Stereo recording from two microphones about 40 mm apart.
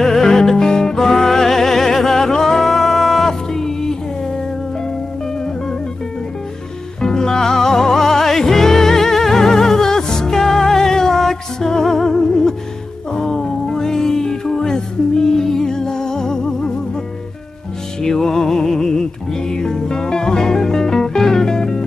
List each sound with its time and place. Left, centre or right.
0.0 s music: centre
7.0 s music: centre
18.0 s music: centre